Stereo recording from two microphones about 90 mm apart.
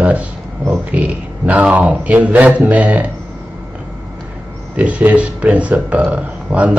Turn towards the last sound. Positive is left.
turn(degrees=-15)  # may be behind; listen again after turning